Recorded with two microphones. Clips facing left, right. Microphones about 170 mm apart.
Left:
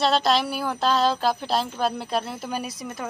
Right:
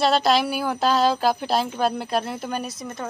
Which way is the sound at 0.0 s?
Centre (ahead or behind).